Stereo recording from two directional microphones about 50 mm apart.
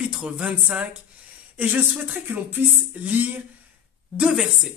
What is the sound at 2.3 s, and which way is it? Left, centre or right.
Speech, right.